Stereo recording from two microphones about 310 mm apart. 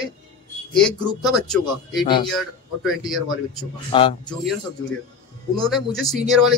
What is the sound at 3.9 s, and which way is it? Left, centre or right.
Speech, centre.